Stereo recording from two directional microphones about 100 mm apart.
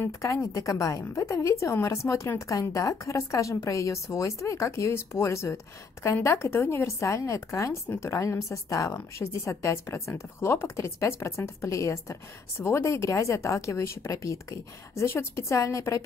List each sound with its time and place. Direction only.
0.0 s a woman's voice: 30° left (ahead or behind)